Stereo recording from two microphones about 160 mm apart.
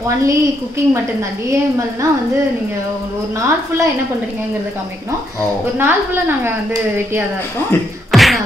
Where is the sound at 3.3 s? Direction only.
15° right (ahead or behind).